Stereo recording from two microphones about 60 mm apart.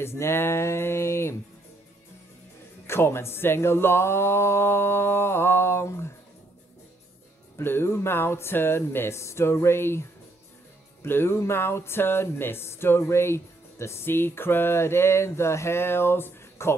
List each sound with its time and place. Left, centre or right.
0.0 s speech: left
2.9 s speech: left
7.5 s speech: left